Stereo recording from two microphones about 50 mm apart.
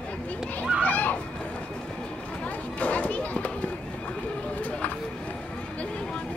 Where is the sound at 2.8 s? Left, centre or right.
Left.